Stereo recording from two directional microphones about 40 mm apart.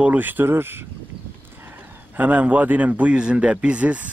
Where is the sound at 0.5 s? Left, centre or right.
Right.